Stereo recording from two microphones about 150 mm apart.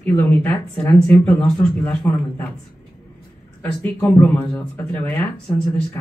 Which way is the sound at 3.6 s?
10° left (ahead or behind).